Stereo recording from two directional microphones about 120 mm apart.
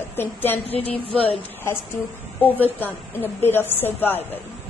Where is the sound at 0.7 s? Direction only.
55° left (ahead or behind).